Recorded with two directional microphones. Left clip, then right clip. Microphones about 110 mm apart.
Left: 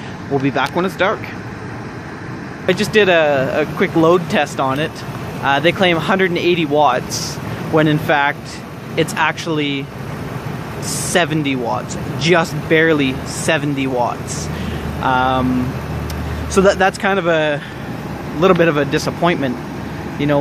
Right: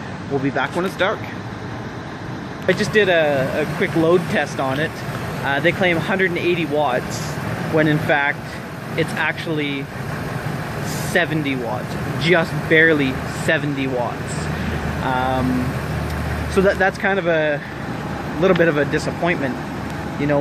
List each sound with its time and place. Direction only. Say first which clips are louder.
0.6 s speech: left 3 dB; 45° left (ahead or behind)
2.6 s speech: left 2 dB; 35° left (ahead or behind)
3.0 s speech: left 4 dB; 55° left (ahead or behind)
4.6 s speech: left 3 dB; 25° left (ahead or behind)
5.4 s speech: left 4 dB; 45° left (ahead or behind); by 7.0 s 80° left
7.7 s speech: left 3 dB; 30° left (ahead or behind)
8.9 s speech: left 4 dB; 55° left (ahead or behind)
11.1 s speech: left 3 dB; 40° left (ahead or behind)
12.2 s speech: left 3 dB; 25° left (ahead or behind)
15.0 s speech: left 6 dB; 30° left (ahead or behind)
16.5 s speech: left 4 dB; 35° left (ahead or behind)
19.2 s speech: left 5 dB; 55° left (ahead or behind)